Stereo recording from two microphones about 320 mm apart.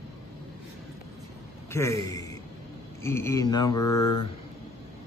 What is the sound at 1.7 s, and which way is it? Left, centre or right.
A man's voice, centre.